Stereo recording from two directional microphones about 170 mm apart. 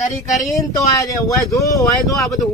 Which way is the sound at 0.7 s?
20° left (ahead or behind).